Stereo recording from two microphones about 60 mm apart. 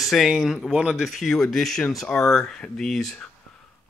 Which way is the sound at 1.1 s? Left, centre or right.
Centre.